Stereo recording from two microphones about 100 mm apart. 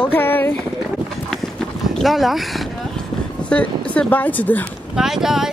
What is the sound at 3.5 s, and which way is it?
Speech, 15° left (ahead or behind).